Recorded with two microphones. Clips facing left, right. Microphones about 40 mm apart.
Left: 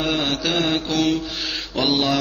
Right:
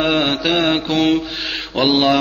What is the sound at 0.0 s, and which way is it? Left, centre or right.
Mantra, right.